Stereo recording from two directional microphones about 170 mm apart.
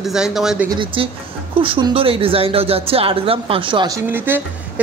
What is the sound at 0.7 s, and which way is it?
Speech, 30° right (ahead or behind).